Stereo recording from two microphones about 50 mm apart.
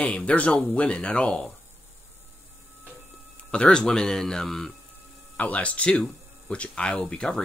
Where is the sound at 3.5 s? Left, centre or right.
Centre.